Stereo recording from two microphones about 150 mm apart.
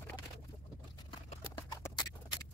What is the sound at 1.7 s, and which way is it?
Horse, 25° left (ahead or behind).